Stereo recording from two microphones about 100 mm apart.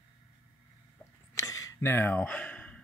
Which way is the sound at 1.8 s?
20° left (ahead or behind).